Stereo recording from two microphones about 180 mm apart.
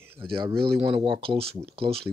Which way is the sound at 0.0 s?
10° right (ahead or behind).